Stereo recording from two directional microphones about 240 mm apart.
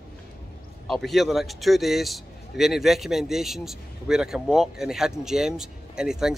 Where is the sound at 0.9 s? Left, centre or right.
Centre.